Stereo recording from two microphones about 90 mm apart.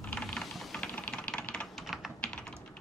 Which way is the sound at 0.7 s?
15° left (ahead or behind).